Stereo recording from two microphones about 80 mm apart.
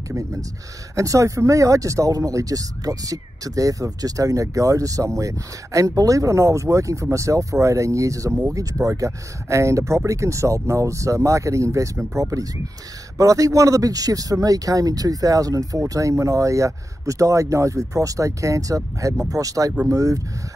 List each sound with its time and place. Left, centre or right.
0.1 s speech: right